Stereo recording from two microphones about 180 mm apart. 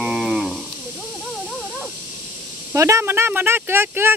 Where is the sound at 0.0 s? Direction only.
Centre (ahead or behind).